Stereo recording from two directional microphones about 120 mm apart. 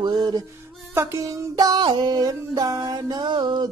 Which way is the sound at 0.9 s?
25° right (ahead or behind).